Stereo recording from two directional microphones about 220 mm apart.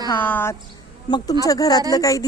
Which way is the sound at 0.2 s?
10° left (ahead or behind).